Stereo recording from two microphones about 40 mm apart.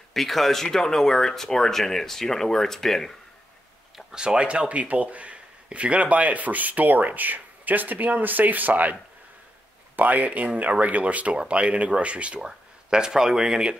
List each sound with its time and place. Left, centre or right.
0.1 s speech: centre
4.1 s speech: right
9.9 s speech: right
12.4 s speech: centre